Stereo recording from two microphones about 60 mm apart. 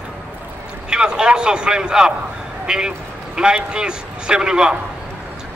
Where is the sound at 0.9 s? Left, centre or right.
Centre.